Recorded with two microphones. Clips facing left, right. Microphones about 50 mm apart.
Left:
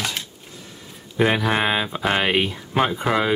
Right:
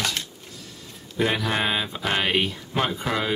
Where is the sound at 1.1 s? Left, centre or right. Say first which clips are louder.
Left 4 dB; left.